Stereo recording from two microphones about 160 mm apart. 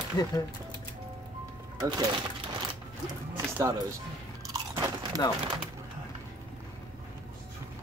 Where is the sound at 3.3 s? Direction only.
15° right (ahead or behind).